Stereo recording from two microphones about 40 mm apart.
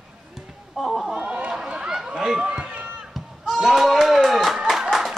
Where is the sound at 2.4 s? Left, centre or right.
Right.